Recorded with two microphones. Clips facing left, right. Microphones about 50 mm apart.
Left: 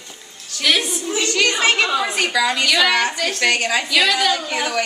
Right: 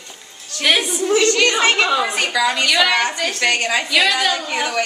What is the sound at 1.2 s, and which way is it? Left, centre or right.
A woman's voice, centre.